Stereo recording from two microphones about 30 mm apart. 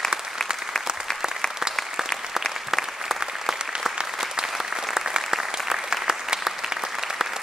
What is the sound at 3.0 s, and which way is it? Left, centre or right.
Applause, centre.